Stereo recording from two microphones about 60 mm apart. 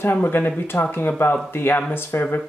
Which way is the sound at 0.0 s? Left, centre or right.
Left.